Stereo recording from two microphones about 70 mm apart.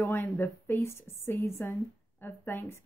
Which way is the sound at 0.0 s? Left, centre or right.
Left.